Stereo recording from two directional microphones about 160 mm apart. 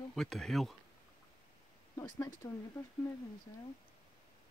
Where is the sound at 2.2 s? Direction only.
20° left (ahead or behind).